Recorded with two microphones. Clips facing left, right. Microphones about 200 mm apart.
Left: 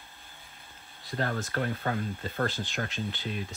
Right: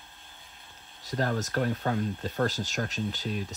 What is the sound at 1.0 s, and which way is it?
Speech, 40° right (ahead or behind).